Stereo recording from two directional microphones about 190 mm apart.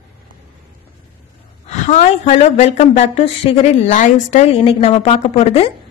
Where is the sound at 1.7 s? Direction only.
40° left (ahead or behind).